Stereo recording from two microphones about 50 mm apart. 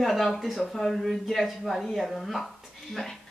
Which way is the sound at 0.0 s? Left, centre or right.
Centre.